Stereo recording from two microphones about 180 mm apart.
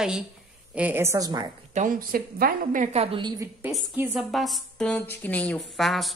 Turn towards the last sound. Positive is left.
turn(degrees=0)  # may be behind; listen again after turning